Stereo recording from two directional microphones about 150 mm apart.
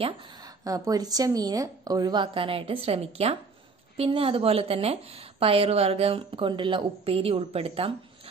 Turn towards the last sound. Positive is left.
turn(degrees=-40)  # may be behind; listen again after turning